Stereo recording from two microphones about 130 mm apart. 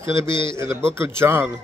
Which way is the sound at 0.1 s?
20° right (ahead or behind).